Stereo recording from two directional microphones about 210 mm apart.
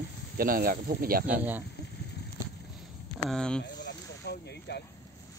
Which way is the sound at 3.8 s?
55° left (ahead or behind).